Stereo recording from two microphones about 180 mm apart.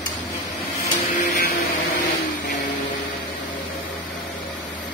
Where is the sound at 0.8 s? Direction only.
45° left (ahead or behind).